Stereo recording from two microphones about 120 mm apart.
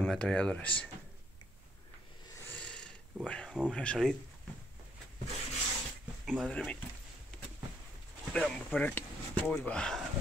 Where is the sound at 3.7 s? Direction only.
5° left (ahead or behind).